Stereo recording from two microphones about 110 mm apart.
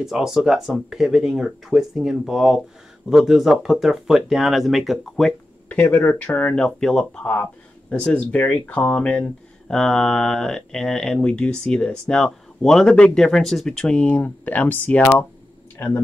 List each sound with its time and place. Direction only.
0.0 s speech: centre (ahead or behind)
5.7 s speech: 15° left (ahead or behind)